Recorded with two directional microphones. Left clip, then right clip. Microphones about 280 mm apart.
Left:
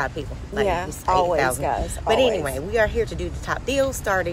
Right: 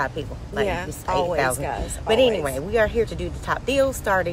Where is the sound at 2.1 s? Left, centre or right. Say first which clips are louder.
Right 1 dB; centre.